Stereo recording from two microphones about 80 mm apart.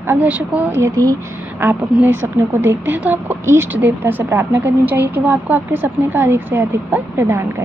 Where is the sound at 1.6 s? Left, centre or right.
Right.